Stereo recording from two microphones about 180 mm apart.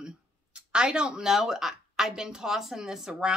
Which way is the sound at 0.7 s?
5° right (ahead or behind).